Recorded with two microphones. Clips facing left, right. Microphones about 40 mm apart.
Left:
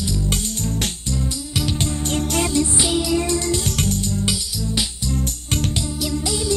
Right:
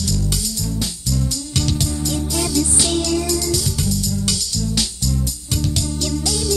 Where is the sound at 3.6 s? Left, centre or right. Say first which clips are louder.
Even; left.